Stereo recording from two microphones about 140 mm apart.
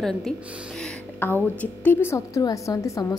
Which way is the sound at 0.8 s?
15° left (ahead or behind).